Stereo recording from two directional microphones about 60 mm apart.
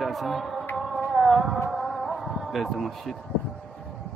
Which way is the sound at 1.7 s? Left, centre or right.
Centre.